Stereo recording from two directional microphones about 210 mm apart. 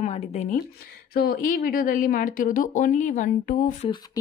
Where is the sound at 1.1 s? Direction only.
45° left (ahead or behind).